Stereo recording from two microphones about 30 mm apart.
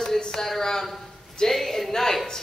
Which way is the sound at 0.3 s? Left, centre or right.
Centre.